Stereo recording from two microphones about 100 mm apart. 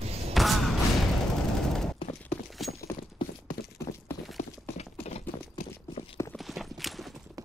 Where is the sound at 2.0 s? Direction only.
60° left (ahead or behind).